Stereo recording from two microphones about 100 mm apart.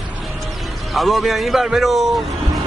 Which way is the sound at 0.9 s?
Centre (ahead or behind).